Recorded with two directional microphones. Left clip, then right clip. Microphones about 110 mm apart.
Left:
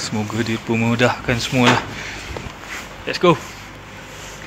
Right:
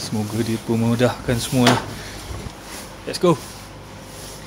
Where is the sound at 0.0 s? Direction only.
30° right (ahead or behind).